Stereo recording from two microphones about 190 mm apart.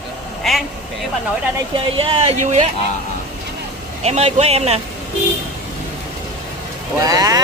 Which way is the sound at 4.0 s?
35° right (ahead or behind).